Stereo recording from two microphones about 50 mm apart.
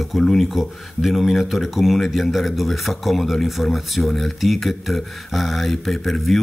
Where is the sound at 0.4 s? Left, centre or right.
Centre.